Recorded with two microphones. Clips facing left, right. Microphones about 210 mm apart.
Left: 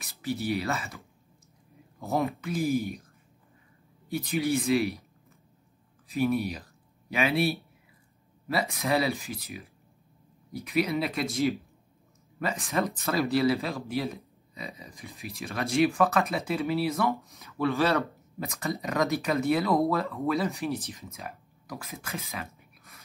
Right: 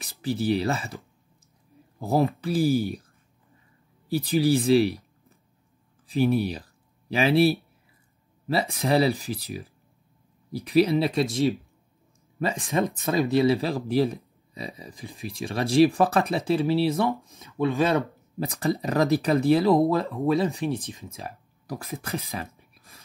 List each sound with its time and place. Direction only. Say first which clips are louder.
0.2 s speech: right 5 dB; 30° right (ahead or behind)
4.1 s speech: right 6 dB; 35° right (ahead or behind)
6.0 s speech: right 4 dB; 30° right (ahead or behind)
8.7 s speech: right 6 dB; 30° right (ahead or behind)
12.4 s speech: right 4 dB; 30° right (ahead or behind)
13.6 s speech: right 7 dB; 35° right (ahead or behind)
17.6 s speech: right 2 dB; 15° right (ahead or behind)
18.4 s speech: right 6 dB; 30° right (ahead or behind)
22.8 s whispering: right 1 dB; 30° right (ahead or behind)